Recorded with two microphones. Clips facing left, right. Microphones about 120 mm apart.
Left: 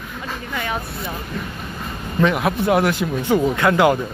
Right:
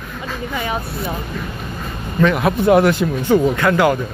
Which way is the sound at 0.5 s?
10° right (ahead or behind).